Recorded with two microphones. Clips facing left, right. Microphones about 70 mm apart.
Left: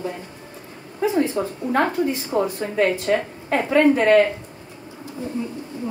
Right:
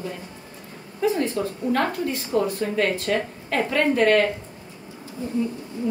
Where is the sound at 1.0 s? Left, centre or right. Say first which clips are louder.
Left 2 dB; centre.